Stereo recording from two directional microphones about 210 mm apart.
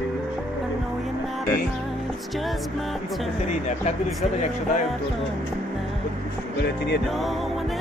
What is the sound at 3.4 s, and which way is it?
Speech, 35° left (ahead or behind).